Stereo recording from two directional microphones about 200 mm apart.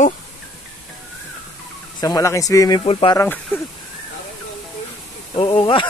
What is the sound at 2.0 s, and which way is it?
Speech, 20° left (ahead or behind).